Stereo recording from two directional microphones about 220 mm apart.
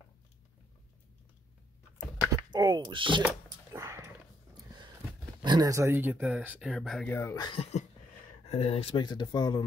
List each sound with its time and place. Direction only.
2.5 s speech: 20° right (ahead or behind)
3.2 s a sound: 10° right (ahead or behind)
5.4 s speech: 20° right (ahead or behind); by 9.6 s 20° left (ahead or behind)